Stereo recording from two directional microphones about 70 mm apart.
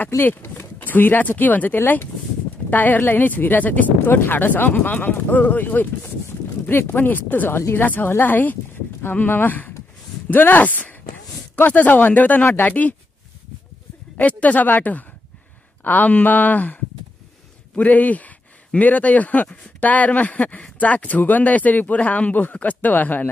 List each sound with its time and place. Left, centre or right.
0.2 s speech: left
14.1 s speech: left